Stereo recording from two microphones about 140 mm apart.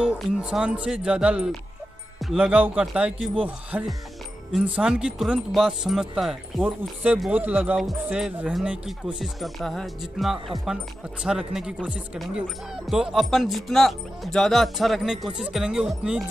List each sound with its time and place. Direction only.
0.0 s speech: 5° right (ahead or behind)